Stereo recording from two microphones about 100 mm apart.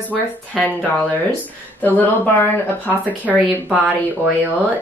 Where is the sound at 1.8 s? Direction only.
15° left (ahead or behind).